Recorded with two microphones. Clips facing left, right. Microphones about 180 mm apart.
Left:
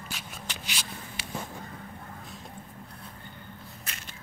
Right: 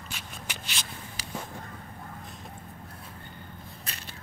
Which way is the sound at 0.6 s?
10° left (ahead or behind).